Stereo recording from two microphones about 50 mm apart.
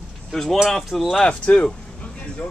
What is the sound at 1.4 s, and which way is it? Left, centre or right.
Speech, left.